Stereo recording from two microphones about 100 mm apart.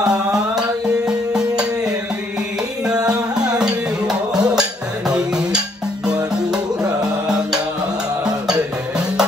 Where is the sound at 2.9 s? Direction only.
40° right (ahead or behind).